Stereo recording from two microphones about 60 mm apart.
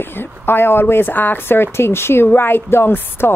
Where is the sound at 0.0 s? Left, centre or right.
Left.